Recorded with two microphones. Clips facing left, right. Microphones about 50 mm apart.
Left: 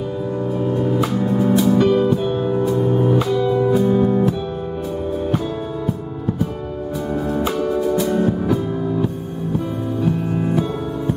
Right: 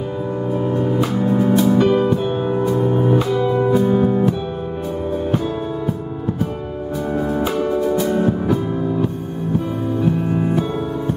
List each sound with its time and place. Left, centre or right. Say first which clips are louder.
0.7 s music: even; centre
3.3 s music: even; centre
7.2 s music: even; centre